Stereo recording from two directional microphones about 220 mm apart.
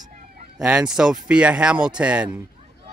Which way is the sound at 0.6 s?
5° right (ahead or behind).